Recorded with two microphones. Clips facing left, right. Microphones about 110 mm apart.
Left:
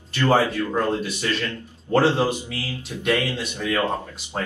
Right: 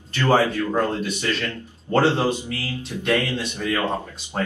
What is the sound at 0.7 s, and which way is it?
Speech, 10° left (ahead or behind).